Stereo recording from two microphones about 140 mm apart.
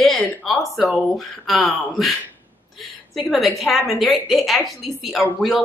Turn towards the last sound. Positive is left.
turn(degrees=10)  # may be behind; listen again after turning